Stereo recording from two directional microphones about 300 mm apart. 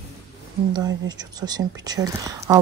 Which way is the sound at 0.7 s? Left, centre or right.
Centre.